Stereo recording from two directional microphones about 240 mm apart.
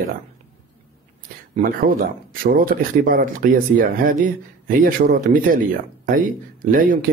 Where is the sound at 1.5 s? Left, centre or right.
Right.